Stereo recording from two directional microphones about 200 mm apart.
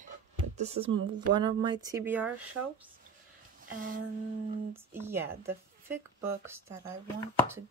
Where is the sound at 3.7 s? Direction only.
45° right (ahead or behind).